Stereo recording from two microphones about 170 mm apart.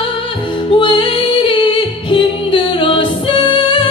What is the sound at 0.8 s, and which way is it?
A capella, 30° left (ahead or behind).